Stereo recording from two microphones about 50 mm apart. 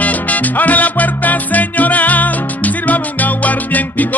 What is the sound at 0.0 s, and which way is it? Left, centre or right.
Music, left.